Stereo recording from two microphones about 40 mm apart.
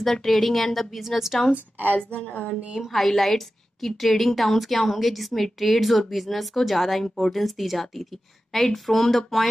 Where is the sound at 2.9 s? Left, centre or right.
Centre.